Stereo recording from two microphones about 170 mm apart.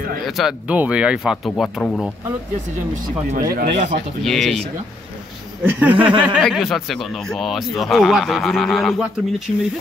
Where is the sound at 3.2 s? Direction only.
55° right (ahead or behind).